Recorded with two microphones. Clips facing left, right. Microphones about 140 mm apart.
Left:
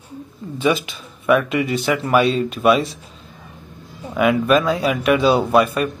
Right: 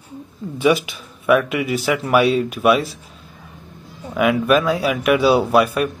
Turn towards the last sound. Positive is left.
turn(degrees=-10)  # may be behind; listen again after turning